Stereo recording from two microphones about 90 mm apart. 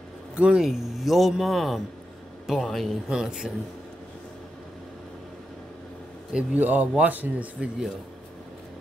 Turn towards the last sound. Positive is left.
turn(degrees=-15)  # may be behind; listen again after turning